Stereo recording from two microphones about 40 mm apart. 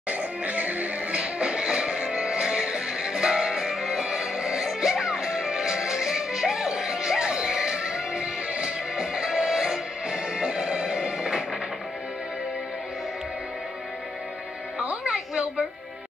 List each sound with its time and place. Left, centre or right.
0.1 s music: right
1.2 s music: right
14.8 s a sound: right